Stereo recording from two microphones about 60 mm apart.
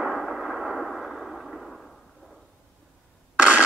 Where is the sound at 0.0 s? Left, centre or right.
Centre.